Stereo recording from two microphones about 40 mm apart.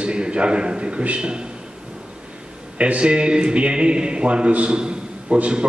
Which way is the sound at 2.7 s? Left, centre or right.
Right.